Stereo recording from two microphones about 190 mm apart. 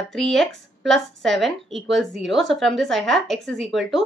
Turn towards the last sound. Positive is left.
turn(degrees=0)  # may be behind; listen again after turning